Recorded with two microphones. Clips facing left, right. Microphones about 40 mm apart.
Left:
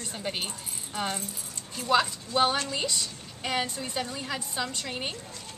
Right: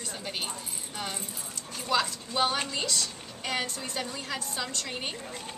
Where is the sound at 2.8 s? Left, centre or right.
Centre.